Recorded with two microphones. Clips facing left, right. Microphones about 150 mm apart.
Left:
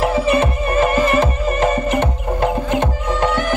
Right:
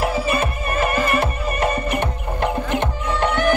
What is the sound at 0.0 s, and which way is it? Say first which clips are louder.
Music: left 5 dB; 25° left (ahead or behind).